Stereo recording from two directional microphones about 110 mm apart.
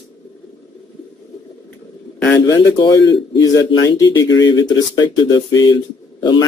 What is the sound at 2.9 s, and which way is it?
Speech, 30° left (ahead or behind).